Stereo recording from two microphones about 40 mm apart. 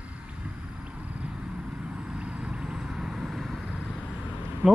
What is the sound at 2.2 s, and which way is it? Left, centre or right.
Vehicle, right.